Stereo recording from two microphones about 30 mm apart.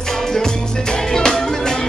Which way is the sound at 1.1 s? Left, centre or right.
Centre.